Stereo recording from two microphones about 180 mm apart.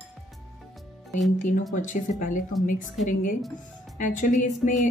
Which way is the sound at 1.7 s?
45° left (ahead or behind).